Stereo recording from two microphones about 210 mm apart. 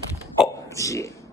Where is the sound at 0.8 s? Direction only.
15° left (ahead or behind).